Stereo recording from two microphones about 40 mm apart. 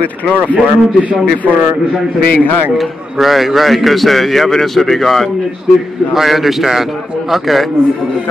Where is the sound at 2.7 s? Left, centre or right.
Centre.